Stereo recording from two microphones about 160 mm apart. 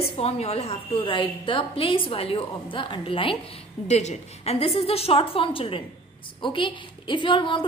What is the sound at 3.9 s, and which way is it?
A woman's voice, 45° left (ahead or behind).